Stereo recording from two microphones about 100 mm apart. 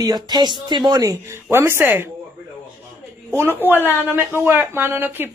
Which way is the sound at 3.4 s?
20° right (ahead or behind).